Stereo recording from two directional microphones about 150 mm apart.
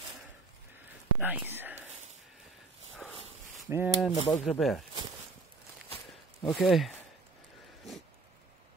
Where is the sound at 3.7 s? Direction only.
15° right (ahead or behind).